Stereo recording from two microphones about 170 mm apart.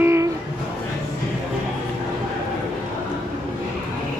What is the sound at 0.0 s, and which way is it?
Music, 15° right (ahead or behind).